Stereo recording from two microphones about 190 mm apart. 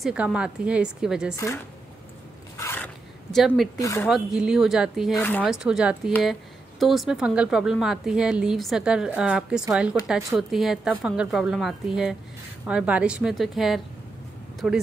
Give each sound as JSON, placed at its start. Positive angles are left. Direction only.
{"t": 0.0, "sound": "a woman's voice", "side_deg": -5}
{"t": 1.3, "sound": "speech", "side_deg": 15}
{"t": 2.5, "sound": "zipper", "side_deg": 15}
{"t": 3.7, "sound": "speech", "side_deg": 15}
{"t": 4.1, "sound": "a woman's voice", "side_deg": -5}
{"t": 5.1, "sound": "speech", "side_deg": 10}
{"t": 5.4, "sound": "a woman's voice", "side_deg": -5}